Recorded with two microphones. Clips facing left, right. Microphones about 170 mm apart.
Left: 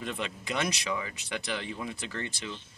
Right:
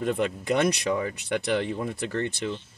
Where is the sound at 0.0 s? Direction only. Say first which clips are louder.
Right 10 dB; 50° right (ahead or behind).